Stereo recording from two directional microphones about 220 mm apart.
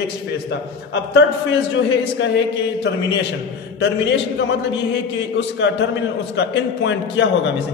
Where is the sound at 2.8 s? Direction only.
50° left (ahead or behind).